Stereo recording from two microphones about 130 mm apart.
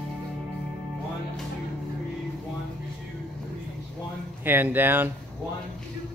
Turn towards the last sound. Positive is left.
turn(degrees=-15)  # may be behind; listen again after turning